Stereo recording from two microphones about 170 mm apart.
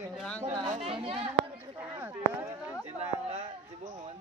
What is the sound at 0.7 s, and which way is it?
Chatter, 35° right (ahead or behind).